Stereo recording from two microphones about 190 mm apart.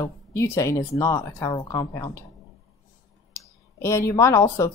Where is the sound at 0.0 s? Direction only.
15° left (ahead or behind).